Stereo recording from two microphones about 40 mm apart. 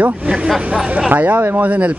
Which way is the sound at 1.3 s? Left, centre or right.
Right.